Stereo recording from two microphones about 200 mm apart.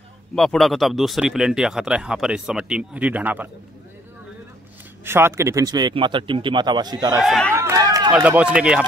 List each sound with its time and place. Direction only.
0.4 s speech: centre (ahead or behind)
5.0 s speech: 10° right (ahead or behind)
7.2 s speech: centre (ahead or behind)
7.5 s a sound: 15° right (ahead or behind)
8.1 s speech: 5° right (ahead or behind)